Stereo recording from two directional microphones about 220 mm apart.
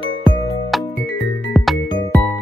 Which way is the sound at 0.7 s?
Centre (ahead or behind).